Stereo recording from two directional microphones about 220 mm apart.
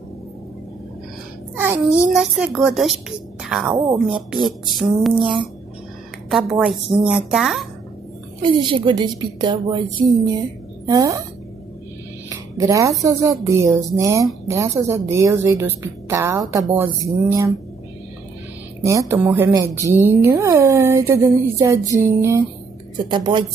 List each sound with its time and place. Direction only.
1.6 s a child's voice: 10° right (ahead or behind)
8.4 s a woman's voice: 20° right (ahead or behind)
10.9 s a woman's voice: 15° right (ahead or behind)
12.3 s music: 15° right (ahead or behind)
13.0 s a woman's voice: 15° right (ahead or behind)
18.9 s a woman's voice: 15° right (ahead or behind)